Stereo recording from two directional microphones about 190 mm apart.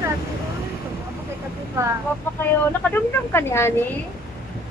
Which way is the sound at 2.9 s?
10° left (ahead or behind).